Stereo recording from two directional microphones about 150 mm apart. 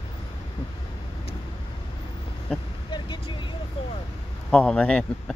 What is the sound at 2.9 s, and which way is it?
Vehicle, 30° left (ahead or behind).